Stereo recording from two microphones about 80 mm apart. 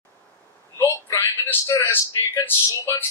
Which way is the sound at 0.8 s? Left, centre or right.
Left.